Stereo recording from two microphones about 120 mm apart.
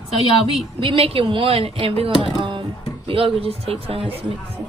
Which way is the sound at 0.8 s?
50° right (ahead or behind).